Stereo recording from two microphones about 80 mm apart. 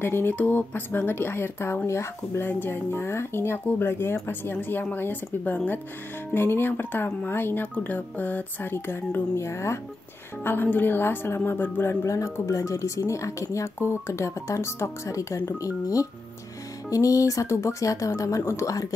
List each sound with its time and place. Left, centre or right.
0.0 s a woman's voice: left